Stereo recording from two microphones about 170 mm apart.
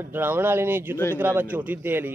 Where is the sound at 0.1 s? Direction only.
10° right (ahead or behind).